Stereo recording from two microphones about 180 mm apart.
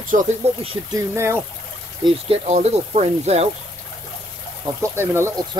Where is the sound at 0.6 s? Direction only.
30° right (ahead or behind).